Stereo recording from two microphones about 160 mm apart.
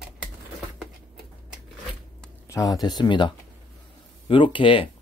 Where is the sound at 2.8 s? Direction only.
30° left (ahead or behind).